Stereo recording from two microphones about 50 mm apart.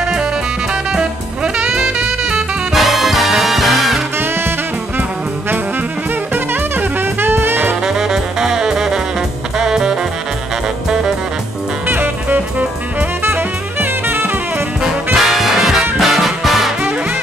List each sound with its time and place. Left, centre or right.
0.0 s music: centre
1.7 s music: centre
4.2 s music: right
6.3 s music: right
7.8 s saxophone: centre
11.9 s music: right
13.2 s drum kit: right
15.1 s music: centre